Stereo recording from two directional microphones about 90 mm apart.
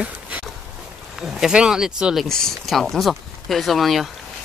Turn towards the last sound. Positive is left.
turn(degrees=0)  # may be behind; listen again after turning